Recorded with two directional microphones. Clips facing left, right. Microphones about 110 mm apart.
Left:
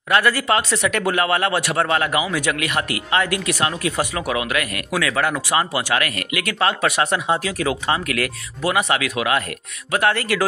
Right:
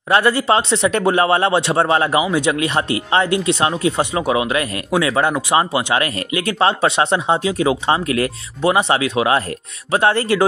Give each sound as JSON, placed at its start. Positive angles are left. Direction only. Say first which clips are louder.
{"t": 0.1, "sound": "speech", "louder": "right 3 dB", "side_deg": -25}